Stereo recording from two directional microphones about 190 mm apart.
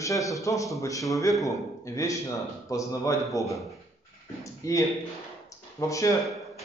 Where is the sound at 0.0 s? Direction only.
15° left (ahead or behind).